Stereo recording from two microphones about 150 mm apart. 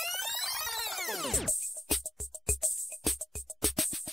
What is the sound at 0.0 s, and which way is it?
Music, centre (ahead or behind).